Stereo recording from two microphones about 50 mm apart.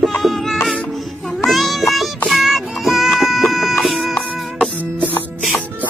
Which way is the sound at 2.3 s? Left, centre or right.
Centre.